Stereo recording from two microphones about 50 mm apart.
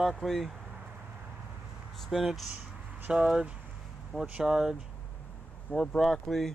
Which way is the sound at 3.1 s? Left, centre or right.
Right.